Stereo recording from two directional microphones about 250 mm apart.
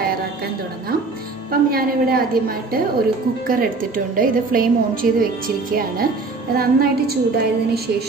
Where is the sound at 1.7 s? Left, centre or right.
Right.